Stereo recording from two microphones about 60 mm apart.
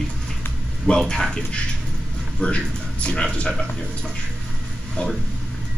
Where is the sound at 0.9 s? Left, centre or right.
Centre.